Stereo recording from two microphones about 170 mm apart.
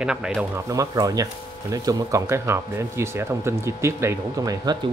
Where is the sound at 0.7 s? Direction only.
20° right (ahead or behind).